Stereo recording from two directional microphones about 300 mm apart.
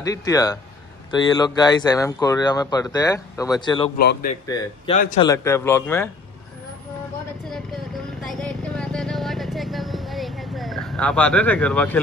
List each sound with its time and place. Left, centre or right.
0.0 s speech: centre
4.0 s a man's voice: left
4.5 s speech: centre
4.9 s speech: left
5.2 s speech: centre
8.3 s vehicle: centre